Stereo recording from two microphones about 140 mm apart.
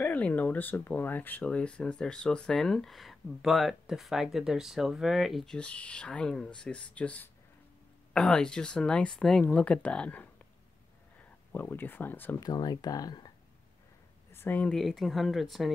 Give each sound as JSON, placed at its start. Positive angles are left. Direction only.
{"t": 0.0, "sound": "speech", "side_deg": 10}
{"t": 11.5, "sound": "speech", "side_deg": 15}
{"t": 12.4, "sound": "speech", "side_deg": 30}
{"t": 14.3, "sound": "speech", "side_deg": 15}